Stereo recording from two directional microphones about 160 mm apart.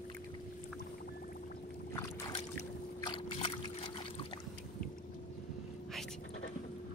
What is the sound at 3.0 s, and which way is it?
Boat, 35° left (ahead or behind).